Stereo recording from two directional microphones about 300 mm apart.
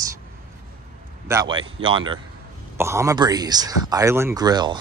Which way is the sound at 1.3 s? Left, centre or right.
Centre.